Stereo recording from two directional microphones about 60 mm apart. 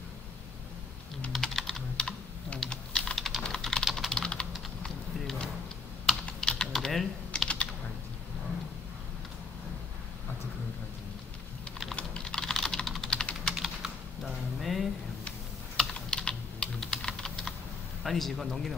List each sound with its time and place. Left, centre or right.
1.3 s typing: centre
2.0 s typing: centre
3.2 s typing: centre
6.7 s typing: centre
11.9 s typing: centre
13.1 s typing: centre
13.6 s typing: centre
15.9 s computer keyboard: centre
18.0 s a man's voice: centre